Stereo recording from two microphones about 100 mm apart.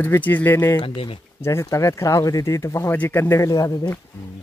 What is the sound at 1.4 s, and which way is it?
Speech, 30° left (ahead or behind).